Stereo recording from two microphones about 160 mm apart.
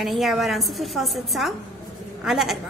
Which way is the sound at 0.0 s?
Centre (ahead or behind).